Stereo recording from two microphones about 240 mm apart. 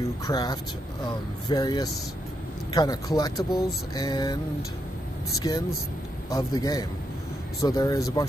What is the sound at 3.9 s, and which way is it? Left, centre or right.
Speech, centre.